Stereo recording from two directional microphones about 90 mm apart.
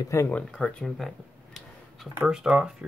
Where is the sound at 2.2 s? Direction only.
5° right (ahead or behind).